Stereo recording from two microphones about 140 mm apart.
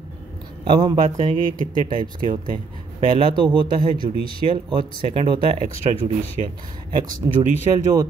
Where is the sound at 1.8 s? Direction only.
35° right (ahead or behind).